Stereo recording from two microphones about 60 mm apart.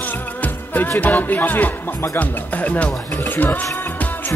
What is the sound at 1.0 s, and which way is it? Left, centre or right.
Speech, left.